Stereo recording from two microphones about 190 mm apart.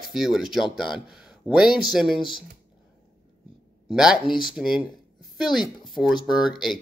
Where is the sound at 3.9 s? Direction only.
5° right (ahead or behind).